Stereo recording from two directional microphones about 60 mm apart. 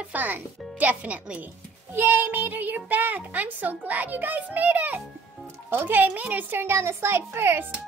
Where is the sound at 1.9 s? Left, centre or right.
Right.